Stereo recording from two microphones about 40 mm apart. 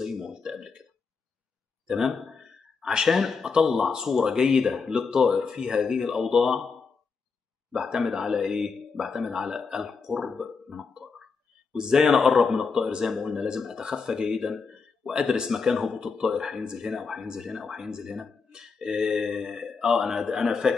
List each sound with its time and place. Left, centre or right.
0.0 s speech: centre
1.9 s a man's voice: centre
7.7 s a man's voice: centre
10.9 s a sound: centre
11.7 s a man's voice: centre